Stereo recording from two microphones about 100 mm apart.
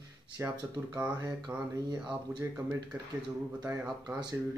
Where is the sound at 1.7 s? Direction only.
40° right (ahead or behind).